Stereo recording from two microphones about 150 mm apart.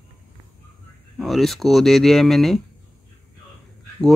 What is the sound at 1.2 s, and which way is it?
Speech, centre (ahead or behind).